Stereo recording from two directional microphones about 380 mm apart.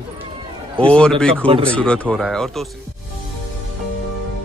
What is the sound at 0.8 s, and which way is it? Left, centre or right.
Speech, centre.